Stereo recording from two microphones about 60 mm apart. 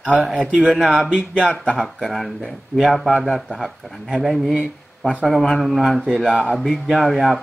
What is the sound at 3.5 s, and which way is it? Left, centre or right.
Speech, centre.